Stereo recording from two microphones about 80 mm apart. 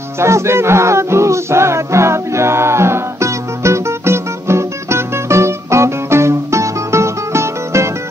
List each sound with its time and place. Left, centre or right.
0.2 s music: right